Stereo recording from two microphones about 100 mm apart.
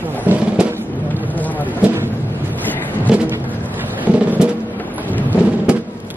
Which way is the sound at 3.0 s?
15° right (ahead or behind).